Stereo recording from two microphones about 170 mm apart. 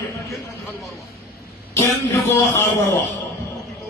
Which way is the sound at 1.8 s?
15° left (ahead or behind).